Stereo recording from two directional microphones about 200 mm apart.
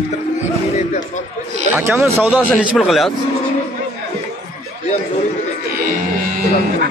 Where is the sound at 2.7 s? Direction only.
Centre (ahead or behind).